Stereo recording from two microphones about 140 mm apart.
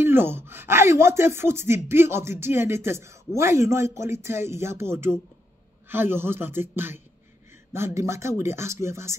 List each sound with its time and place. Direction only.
0.0 s speech: 15° right (ahead or behind)